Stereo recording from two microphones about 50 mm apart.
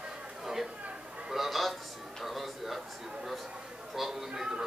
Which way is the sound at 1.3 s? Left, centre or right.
Centre.